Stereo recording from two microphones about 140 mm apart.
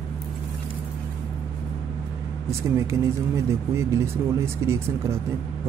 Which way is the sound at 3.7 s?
20° right (ahead or behind).